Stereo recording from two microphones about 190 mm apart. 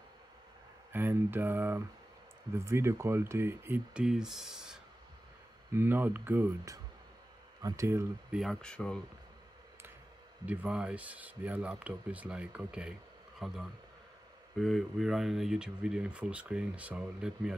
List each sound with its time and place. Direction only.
0.9 s speech: 10° right (ahead or behind)
8.4 s speech: centre (ahead or behind)
10.4 s speech: 5° right (ahead or behind)
14.6 s speech: centre (ahead or behind)